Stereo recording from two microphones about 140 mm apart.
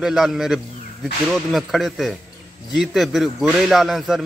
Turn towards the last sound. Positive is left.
turn(degrees=0)  # may be behind; listen again after turning